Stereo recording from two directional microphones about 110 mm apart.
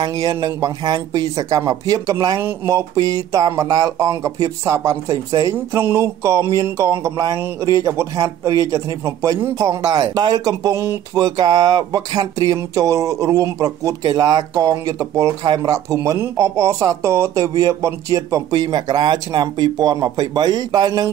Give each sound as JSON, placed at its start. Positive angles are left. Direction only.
{"t": 0.0, "sound": "speech", "side_deg": -35}